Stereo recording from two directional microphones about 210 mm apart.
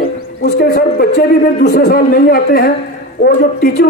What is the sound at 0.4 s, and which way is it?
A man's voice, 45° left (ahead or behind).